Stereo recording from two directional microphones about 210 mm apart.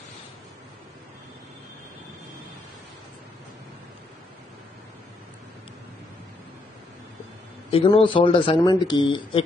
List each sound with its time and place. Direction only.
7.7 s speech: 25° left (ahead or behind)